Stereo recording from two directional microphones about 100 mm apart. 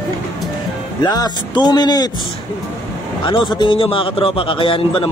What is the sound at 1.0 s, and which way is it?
Speech, 45° left (ahead or behind).